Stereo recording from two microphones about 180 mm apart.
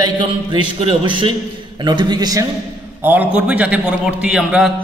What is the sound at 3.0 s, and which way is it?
Speech, 10° right (ahead or behind).